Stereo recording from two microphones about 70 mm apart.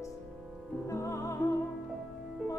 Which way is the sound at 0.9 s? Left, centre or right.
Left.